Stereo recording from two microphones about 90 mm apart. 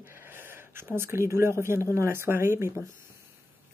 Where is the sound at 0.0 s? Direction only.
25° right (ahead or behind).